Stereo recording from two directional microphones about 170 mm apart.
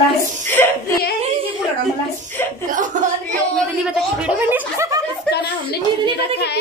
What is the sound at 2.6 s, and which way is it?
Speech, 50° right (ahead or behind).